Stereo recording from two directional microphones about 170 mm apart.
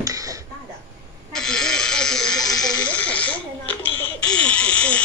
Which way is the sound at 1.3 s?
5° left (ahead or behind).